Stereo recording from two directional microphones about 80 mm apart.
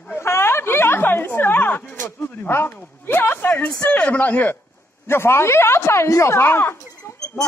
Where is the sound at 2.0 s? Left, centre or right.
Left.